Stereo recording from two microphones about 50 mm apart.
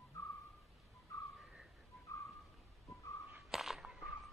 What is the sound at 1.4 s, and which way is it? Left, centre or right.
Whistling, centre.